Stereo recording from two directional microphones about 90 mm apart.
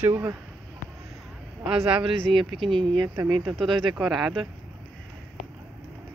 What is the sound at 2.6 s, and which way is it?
Speech, 65° right (ahead or behind).